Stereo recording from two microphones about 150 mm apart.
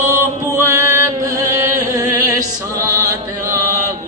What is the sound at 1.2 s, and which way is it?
Chant, 20° right (ahead or behind).